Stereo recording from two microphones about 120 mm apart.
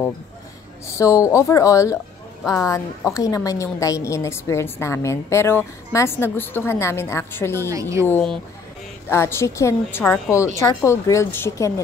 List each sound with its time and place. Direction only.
0.9 s a woman's voice: 25° left (ahead or behind)
7.7 s a woman's voice: 25° right (ahead or behind)
9.1 s a woman's voice: 20° left (ahead or behind)